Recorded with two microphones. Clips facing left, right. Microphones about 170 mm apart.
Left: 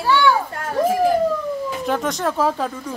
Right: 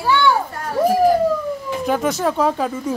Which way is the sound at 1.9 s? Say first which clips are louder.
Right 4 dB; 5° right (ahead or behind).